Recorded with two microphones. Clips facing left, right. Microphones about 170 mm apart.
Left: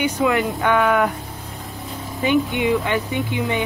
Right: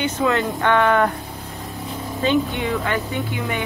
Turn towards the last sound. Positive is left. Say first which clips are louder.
# left 3 dB
turn(degrees=20)  # may be behind; listen again after turning